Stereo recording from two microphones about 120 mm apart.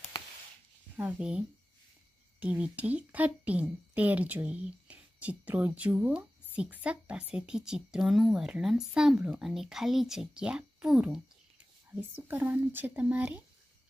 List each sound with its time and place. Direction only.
0.9 s speech: 10° right (ahead or behind)
2.4 s a woman's voice: 10° right (ahead or behind)